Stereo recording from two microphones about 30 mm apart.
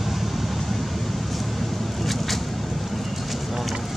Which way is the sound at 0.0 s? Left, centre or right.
Centre.